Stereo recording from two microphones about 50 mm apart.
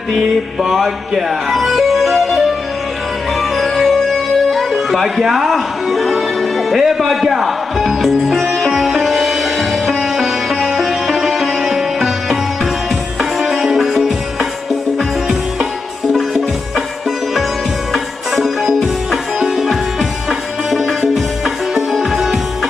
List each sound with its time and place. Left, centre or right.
0.1 s music: centre
17.9 s music: centre